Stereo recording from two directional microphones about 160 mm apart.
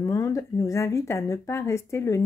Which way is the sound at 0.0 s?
20° left (ahead or behind).